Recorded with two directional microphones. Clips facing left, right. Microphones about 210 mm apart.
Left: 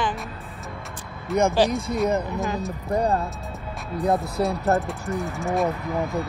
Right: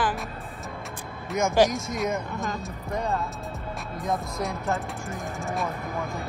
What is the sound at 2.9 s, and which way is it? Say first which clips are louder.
Speech: left 6 dB; 35° left (ahead or behind).